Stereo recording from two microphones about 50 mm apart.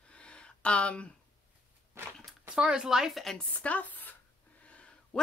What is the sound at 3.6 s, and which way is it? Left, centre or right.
Speech, left.